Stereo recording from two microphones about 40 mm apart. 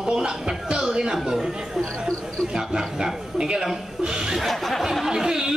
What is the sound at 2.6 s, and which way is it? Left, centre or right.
Speech, centre.